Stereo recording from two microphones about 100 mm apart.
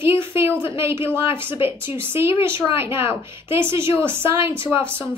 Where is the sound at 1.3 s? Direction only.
55° left (ahead or behind).